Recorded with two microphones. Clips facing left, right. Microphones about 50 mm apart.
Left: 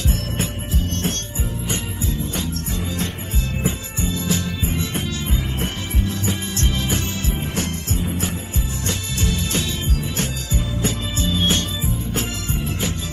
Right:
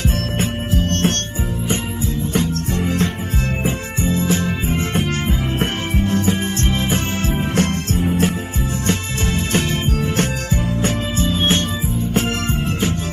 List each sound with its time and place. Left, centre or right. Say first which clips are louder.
0.4 s music: right 5 dB; right
2.3 s music: right 7 dB; right
4.0 s music: right 5 dB; right
8.8 s music: right 3 dB; right